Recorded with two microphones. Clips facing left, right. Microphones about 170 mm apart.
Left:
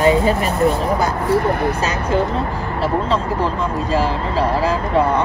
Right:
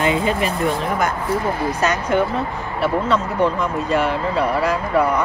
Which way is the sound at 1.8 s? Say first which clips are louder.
Even; 30° left (ahead or behind).